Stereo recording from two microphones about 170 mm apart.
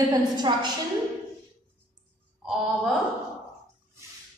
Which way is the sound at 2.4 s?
Centre (ahead or behind).